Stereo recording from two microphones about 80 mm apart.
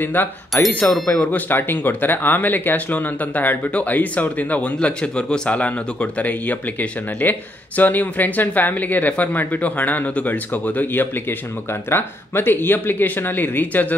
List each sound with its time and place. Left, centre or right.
0.0 s speech: left